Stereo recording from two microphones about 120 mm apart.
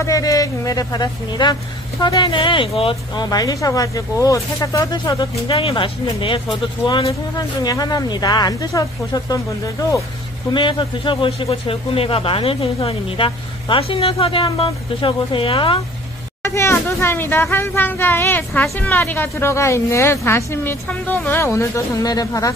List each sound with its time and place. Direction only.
0.0 s speech: 30° left (ahead or behind)
2.3 s a man's voice: 45° left (ahead or behind)
3.3 s speech: 30° left (ahead or behind)
7.1 s speech: 30° left (ahead or behind)
10.5 s a man's voice: 40° left (ahead or behind)
16.4 s speech: 20° left (ahead or behind)